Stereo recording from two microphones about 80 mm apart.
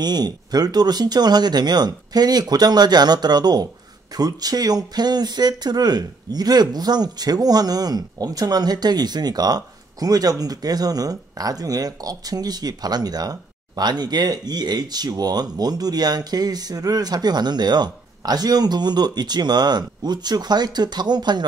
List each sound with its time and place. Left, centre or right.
0.0 s speech: right